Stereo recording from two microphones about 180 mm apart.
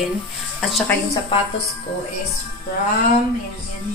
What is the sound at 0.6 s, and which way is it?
Speech, centre (ahead or behind).